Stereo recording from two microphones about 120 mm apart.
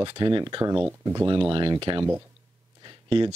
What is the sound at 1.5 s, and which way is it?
Speech, 40° right (ahead or behind).